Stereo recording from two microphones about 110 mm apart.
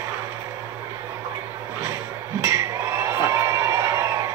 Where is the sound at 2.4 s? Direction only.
25° right (ahead or behind).